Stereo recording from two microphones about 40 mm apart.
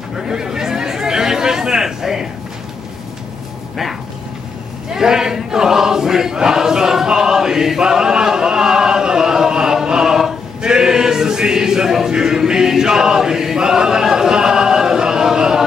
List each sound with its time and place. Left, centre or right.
0.2 s chatter: centre
4.9 s choir: centre
10.7 s male singing: centre
12.1 s choir: centre